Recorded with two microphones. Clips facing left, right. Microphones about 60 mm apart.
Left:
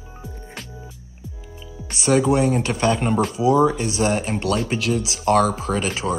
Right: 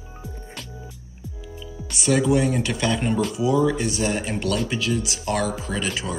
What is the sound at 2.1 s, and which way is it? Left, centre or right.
Speech, left.